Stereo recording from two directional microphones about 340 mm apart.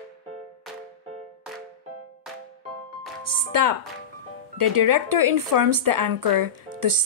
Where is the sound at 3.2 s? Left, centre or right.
Right.